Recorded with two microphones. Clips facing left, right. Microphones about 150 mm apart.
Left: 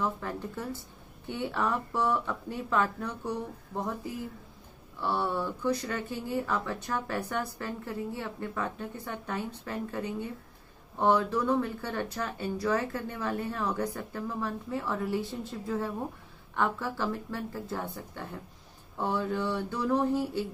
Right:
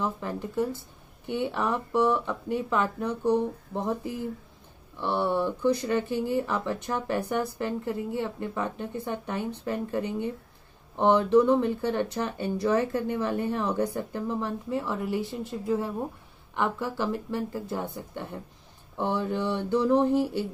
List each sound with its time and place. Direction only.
0.0 s speech: 20° right (ahead or behind)
5.0 s speech: 20° right (ahead or behind)